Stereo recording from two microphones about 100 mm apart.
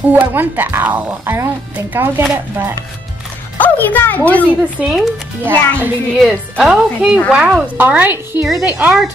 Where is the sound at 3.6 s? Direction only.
20° left (ahead or behind).